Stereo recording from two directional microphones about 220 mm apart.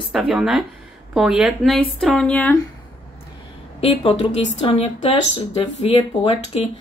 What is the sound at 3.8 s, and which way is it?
Speech, 25° left (ahead or behind).